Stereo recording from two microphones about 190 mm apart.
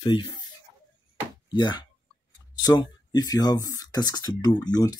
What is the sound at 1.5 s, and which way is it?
Speech, 25° left (ahead or behind).